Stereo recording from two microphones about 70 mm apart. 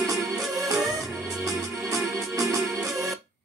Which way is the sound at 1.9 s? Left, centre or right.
Right.